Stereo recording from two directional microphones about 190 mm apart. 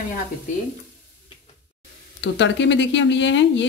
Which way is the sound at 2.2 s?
70° left (ahead or behind).